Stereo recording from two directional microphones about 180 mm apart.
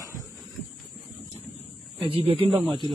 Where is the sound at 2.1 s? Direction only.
30° right (ahead or behind).